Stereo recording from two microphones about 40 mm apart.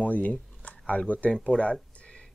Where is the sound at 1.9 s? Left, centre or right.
Left.